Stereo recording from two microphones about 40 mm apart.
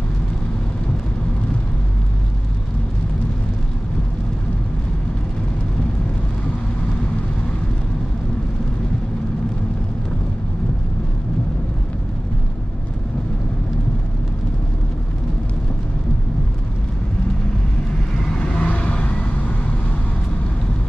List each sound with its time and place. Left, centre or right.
18.3 s vehicle: centre
18.6 s vehicle: left